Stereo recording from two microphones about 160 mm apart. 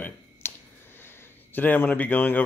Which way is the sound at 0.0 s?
15° left (ahead or behind).